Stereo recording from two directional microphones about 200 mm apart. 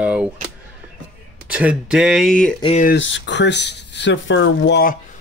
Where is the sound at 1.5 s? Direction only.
5° right (ahead or behind).